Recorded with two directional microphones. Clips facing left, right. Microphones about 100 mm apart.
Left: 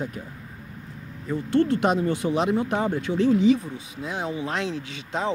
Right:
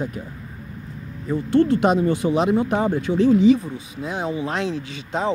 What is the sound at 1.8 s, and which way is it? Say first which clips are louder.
Speech: right 4 dB; 20° right (ahead or behind).